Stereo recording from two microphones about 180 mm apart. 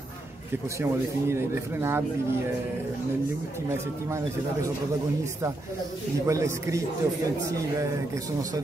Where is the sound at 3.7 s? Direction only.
15° right (ahead or behind).